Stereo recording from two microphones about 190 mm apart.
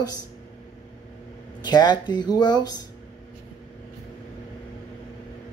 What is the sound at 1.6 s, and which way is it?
Speech, 20° left (ahead or behind).